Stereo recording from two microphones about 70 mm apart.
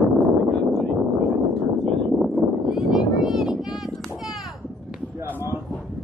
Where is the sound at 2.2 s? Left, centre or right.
Centre.